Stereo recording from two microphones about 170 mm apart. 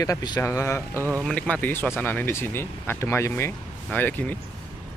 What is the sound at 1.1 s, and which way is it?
Speech, 5° left (ahead or behind).